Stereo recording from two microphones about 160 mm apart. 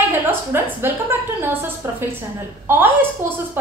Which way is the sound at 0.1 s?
15° right (ahead or behind).